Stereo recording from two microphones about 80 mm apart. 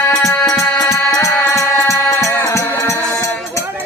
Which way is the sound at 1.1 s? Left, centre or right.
Left.